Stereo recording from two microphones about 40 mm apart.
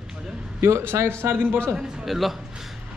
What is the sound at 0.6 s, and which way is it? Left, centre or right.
Speech, right.